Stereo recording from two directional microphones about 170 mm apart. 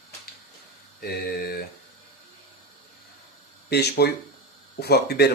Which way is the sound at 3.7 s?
75° left (ahead or behind).